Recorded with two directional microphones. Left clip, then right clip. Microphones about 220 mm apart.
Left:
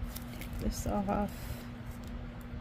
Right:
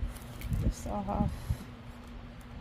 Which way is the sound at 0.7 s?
20° left (ahead or behind).